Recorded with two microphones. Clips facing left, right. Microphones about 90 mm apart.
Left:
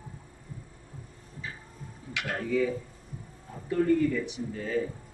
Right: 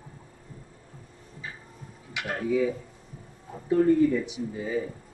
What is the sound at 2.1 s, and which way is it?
Speech, 15° right (ahead or behind).